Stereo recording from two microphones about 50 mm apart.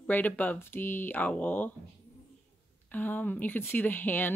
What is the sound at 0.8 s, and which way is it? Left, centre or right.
Speech, left.